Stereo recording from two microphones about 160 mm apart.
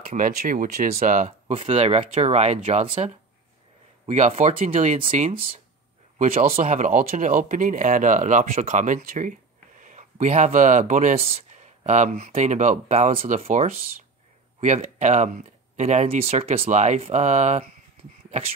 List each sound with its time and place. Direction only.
0.1 s speech: 55° right (ahead or behind)
1.5 s speech: 40° right (ahead or behind)
4.1 s speech: 45° right (ahead or behind)
6.1 s speech: 40° right (ahead or behind)